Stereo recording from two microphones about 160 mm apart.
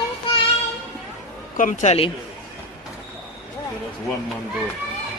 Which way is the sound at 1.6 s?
50° left (ahead or behind).